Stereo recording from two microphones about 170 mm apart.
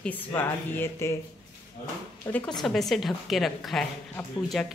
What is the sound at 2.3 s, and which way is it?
A man's voice, 5° left (ahead or behind).